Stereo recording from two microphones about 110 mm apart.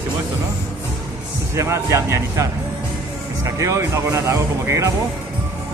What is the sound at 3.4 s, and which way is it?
Speech, 30° right (ahead or behind).